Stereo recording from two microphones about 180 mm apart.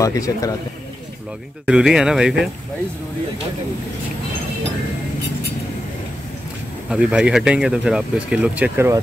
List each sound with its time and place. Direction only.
0.0 s speech: 20° left (ahead or behind)
1.7 s speech: 5° right (ahead or behind)
6.9 s speech: 5° right (ahead or behind)